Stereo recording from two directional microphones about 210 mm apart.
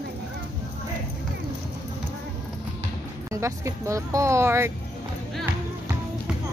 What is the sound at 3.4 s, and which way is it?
Speech, 15° right (ahead or behind).